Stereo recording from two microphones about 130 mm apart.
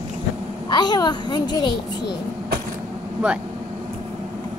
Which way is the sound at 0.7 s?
35° left (ahead or behind).